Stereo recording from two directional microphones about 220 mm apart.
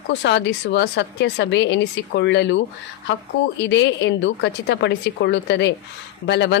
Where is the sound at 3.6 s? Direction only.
55° left (ahead or behind).